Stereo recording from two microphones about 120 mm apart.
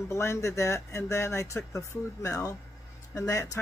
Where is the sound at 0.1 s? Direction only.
25° left (ahead or behind).